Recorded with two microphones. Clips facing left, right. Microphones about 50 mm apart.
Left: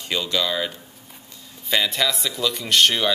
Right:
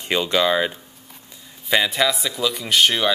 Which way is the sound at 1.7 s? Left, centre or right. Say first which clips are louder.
Right 3 dB; centre.